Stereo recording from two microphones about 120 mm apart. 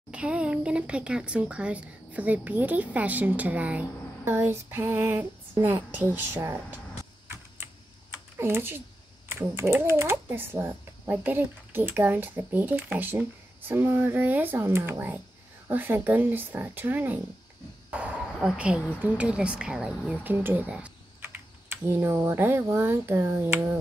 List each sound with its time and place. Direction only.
0.1 s speech: 10° right (ahead or behind)
8.4 s a child's voice: 20° right (ahead or behind)